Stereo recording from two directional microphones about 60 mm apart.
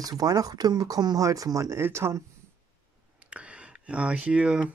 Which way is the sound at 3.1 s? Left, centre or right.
Right.